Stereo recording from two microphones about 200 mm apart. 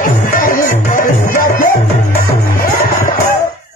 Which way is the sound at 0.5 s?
40° left (ahead or behind).